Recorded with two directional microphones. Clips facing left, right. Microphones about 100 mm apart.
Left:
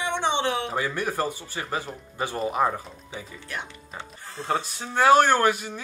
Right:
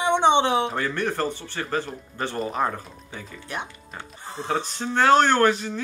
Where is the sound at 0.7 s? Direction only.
10° left (ahead or behind).